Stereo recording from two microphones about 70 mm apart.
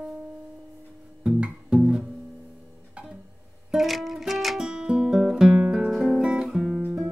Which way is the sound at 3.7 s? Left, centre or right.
Centre.